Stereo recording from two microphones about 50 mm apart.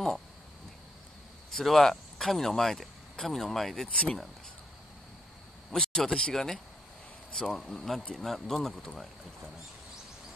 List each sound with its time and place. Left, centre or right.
1.5 s speech: centre
3.9 s speech: left
5.7 s speech: centre